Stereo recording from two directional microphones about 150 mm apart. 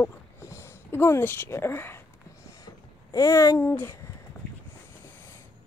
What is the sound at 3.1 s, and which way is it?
Speech, 20° left (ahead or behind).